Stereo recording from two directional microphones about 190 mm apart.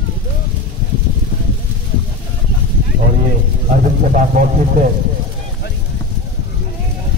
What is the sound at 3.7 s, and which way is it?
Speech, 45° right (ahead or behind).